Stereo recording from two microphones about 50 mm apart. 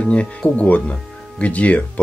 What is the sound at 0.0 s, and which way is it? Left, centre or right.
Speech, left.